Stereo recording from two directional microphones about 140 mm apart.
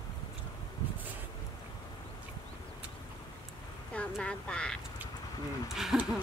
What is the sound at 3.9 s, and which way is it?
Speech, 10° left (ahead or behind).